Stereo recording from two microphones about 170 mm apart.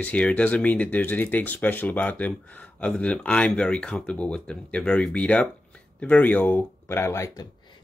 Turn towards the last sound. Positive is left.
turn(degrees=20)  # may be behind; listen again after turning